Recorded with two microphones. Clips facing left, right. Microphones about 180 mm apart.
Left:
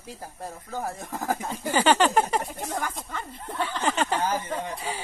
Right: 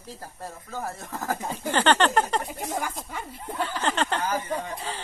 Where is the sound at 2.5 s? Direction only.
10° right (ahead or behind).